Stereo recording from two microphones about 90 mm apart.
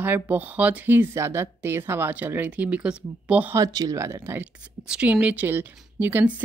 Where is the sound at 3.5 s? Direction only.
45° right (ahead or behind).